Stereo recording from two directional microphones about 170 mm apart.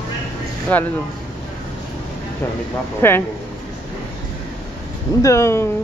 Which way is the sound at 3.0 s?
15° left (ahead or behind).